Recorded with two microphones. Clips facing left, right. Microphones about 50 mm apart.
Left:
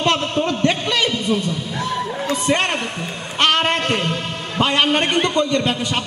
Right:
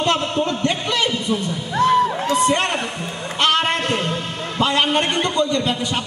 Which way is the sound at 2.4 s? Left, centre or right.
Left.